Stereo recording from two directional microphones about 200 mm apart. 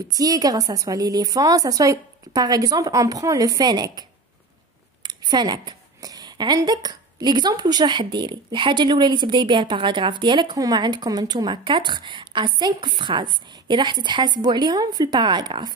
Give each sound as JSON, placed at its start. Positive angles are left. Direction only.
{"t": 0.1, "sound": "a woman's voice", "side_deg": -20}
{"t": 5.0, "sound": "a woman's voice", "side_deg": -20}